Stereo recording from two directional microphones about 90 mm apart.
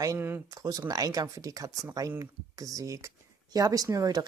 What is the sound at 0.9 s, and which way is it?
Speech, 40° right (ahead or behind).